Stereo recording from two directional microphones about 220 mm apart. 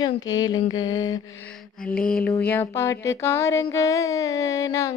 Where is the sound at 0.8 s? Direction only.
15° left (ahead or behind).